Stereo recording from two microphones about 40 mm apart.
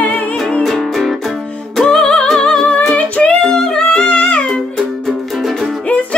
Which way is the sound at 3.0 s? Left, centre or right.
Left.